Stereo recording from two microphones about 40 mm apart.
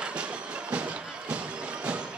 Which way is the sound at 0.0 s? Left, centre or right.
Right.